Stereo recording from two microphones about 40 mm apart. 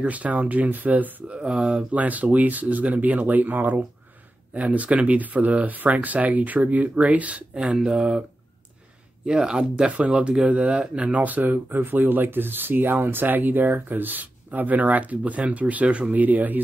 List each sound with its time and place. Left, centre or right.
0.0 s speech: right
1.3 s speech: right
1.9 s speech: right
4.6 s speech: right
7.5 s speech: centre
9.2 s speech: right
9.9 s speech: right